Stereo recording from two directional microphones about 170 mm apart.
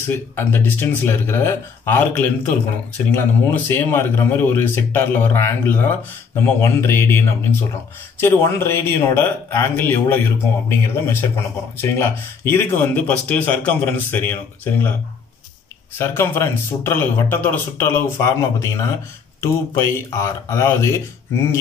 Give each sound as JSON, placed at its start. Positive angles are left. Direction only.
{"t": 0.1, "sound": "speech", "side_deg": 10}
{"t": 16.0, "sound": "speech", "side_deg": 15}